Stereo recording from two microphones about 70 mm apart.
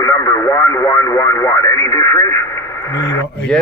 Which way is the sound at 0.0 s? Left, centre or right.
Left.